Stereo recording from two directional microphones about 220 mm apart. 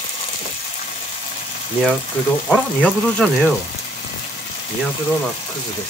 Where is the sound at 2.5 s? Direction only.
5° left (ahead or behind).